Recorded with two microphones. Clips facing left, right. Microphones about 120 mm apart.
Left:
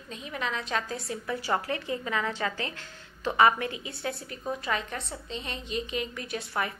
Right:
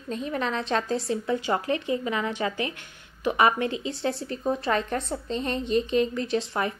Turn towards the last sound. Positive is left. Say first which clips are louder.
# right 6 dB
turn(degrees=-25)  # may be behind; listen again after turning